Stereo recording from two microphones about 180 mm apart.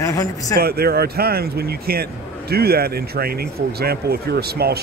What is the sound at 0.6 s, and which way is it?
Speech, 60° right (ahead or behind).